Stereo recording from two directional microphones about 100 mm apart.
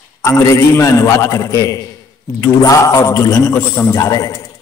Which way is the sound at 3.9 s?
35° left (ahead or behind).